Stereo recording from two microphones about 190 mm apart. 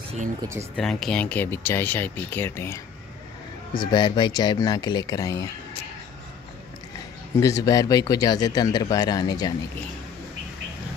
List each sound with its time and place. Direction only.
0.4 s speech: 15° right (ahead or behind)
0.7 s speech: 5° left (ahead or behind)
3.7 s speech: 25° left (ahead or behind)
7.3 s speech: 20° left (ahead or behind)